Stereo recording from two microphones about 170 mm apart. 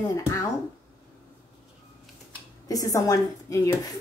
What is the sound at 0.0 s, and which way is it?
Speech, 20° left (ahead or behind).